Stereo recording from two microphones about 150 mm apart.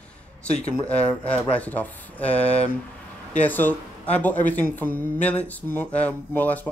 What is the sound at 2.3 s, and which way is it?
Speech, 45° left (ahead or behind).